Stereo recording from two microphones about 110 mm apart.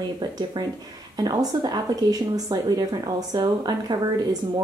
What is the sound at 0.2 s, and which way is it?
A woman's voice, 40° right (ahead or behind).